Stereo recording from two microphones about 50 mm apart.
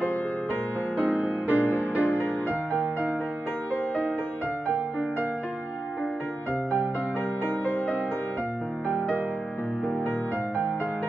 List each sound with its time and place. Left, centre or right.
0.9 s music: right
2.7 s music: right